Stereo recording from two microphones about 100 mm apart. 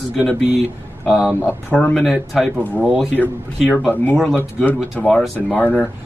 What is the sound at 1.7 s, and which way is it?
Speech, 10° left (ahead or behind).